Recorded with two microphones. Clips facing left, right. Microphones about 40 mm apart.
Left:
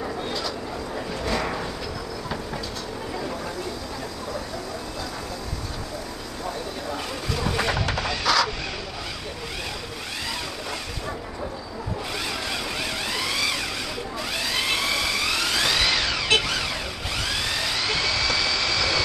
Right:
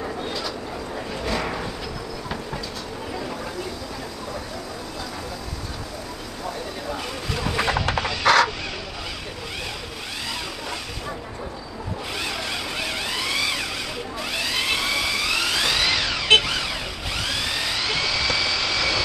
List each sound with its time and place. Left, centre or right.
0.0 s vehicle: centre
7.5 s a sound: centre
8.2 s crow: right
12.8 s vehicle: centre